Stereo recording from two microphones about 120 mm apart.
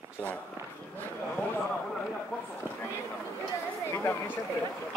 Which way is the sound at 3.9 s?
20° left (ahead or behind).